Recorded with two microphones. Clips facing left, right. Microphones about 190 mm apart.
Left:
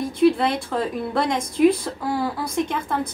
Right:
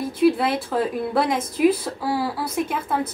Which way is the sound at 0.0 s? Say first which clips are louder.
Left 1 dB; 5° right (ahead or behind).